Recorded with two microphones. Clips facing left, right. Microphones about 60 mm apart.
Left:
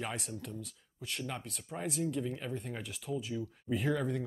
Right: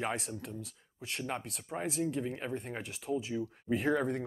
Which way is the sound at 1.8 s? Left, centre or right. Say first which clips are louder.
Right 1 dB; centre.